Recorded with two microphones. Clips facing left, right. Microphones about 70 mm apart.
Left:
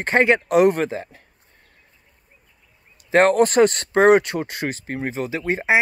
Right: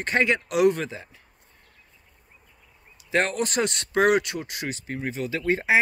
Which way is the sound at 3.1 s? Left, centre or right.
Left.